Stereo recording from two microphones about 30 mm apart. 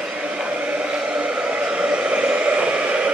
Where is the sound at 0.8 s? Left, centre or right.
Right.